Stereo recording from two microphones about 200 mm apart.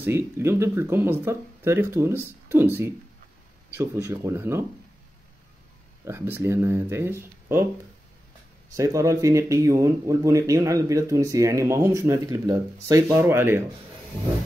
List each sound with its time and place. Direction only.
0.0 s speech: 15° right (ahead or behind)
6.0 s speech: 10° right (ahead or behind)
8.7 s speech: 15° right (ahead or behind)